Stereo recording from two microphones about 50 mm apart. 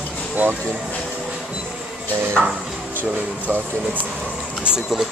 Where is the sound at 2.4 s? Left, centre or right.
Centre.